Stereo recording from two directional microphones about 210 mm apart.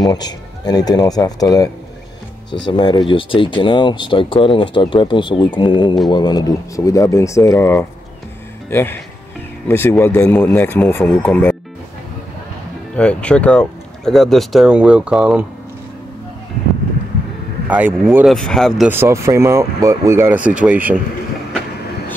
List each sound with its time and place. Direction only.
0.0 s speech: 20° left (ahead or behind)
12.9 s speech: 5° left (ahead or behind)
17.6 s speech: 5° right (ahead or behind)
18.9 s speech: 10° right (ahead or behind)